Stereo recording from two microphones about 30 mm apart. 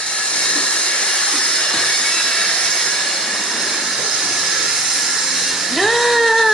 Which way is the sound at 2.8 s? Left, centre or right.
Centre.